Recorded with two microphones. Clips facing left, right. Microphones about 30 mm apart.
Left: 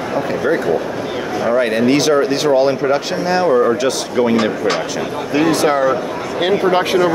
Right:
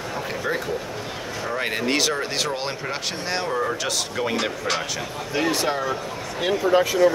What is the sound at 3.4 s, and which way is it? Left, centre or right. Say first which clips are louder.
Speech: left 13 dB; centre.